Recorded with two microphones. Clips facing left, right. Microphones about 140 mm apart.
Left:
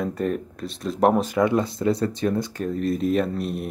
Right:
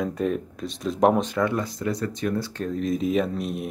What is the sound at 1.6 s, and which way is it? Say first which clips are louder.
Speech: left 5 dB; 25° left (ahead or behind).